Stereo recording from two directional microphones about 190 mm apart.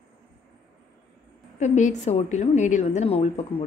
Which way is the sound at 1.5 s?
40° left (ahead or behind).